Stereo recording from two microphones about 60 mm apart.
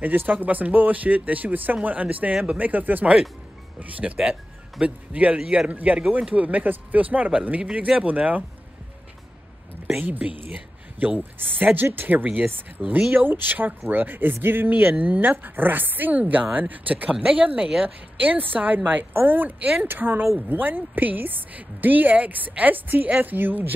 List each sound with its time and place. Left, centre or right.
0.0 s a woman's voice: right
4.2 s a woman's voice: centre
9.9 s a woman's voice: right